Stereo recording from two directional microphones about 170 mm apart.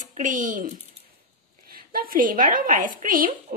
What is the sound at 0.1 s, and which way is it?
A woman's voice, 50° right (ahead or behind).